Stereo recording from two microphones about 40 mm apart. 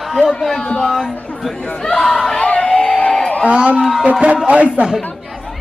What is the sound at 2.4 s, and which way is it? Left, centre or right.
Crowd, left.